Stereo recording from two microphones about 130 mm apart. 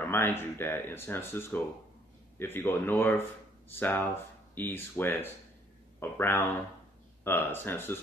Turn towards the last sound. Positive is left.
turn(degrees=15)  # may be behind; listen again after turning